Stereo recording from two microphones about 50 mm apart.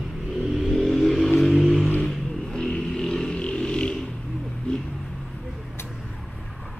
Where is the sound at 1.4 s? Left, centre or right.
Centre.